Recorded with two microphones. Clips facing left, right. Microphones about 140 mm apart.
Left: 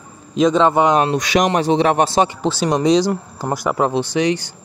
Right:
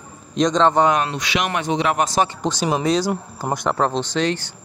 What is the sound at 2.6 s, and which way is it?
Speech, 5° right (ahead or behind).